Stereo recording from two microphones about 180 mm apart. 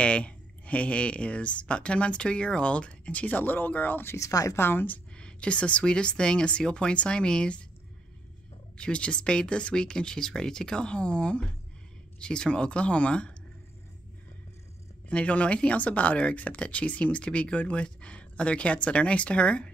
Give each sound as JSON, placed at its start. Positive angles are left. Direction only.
{"t": 0.0, "sound": "speech", "side_deg": 5}
{"t": 8.7, "sound": "speech", "side_deg": 5}
{"t": 15.0, "sound": "speech", "side_deg": 5}